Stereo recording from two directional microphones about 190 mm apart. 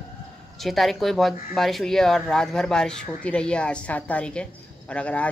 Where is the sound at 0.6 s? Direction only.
Centre (ahead or behind).